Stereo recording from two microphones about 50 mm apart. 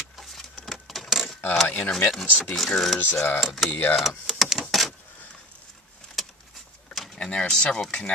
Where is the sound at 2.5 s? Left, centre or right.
Centre.